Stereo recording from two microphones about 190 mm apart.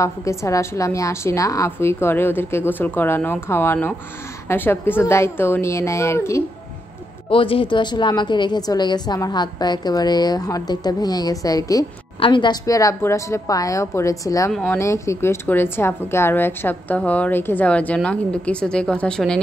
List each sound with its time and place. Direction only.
0.0 s a woman's voice: 15° left (ahead or behind)
7.2 s a woman's voice: 30° left (ahead or behind); by 19.4 s 5° left (ahead or behind)